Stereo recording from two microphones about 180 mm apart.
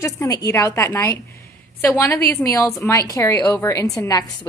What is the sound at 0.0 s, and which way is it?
A woman's voice, 20° left (ahead or behind).